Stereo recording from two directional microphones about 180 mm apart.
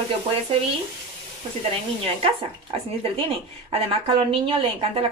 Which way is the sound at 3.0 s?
30° right (ahead or behind).